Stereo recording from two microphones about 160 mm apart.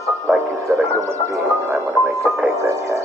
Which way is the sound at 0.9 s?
20° right (ahead or behind).